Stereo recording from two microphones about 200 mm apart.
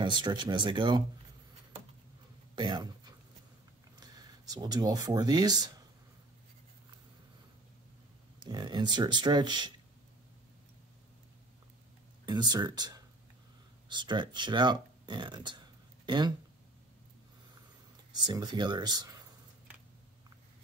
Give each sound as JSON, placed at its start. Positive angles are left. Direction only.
{"t": 0.0, "sound": "speech", "side_deg": -20}
{"t": 2.5, "sound": "a sound", "side_deg": -20}
{"t": 4.0, "sound": "speech", "side_deg": -20}
{"t": 8.4, "sound": "speech", "side_deg": -20}
{"t": 12.3, "sound": "speech", "side_deg": -20}
{"t": 18.1, "sound": "speech", "side_deg": -20}